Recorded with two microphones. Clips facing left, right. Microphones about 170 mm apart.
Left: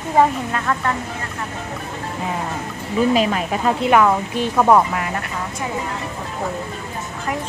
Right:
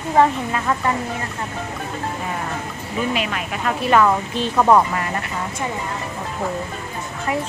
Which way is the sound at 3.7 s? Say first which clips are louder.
Even; 15° left (ahead or behind).